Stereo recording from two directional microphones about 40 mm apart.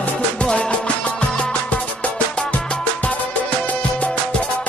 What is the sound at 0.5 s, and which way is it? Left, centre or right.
Music, left.